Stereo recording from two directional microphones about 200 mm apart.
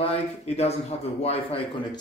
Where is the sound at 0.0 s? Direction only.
30° left (ahead or behind).